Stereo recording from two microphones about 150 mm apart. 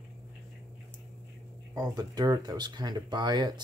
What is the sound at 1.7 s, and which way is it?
Speech, 25° right (ahead or behind).